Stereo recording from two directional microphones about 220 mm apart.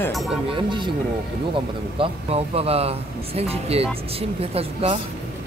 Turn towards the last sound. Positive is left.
turn(degrees=-25)  # may be behind; listen again after turning